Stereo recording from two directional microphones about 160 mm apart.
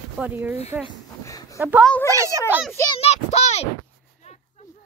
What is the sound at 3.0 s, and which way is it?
Speech, 40° left (ahead or behind).